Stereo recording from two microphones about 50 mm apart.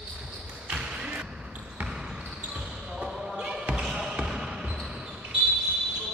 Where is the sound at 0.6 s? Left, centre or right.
Centre.